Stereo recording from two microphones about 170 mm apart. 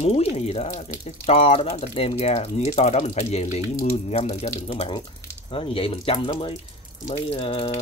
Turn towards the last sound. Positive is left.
turn(degrees=35)  # may be behind; listen again after turning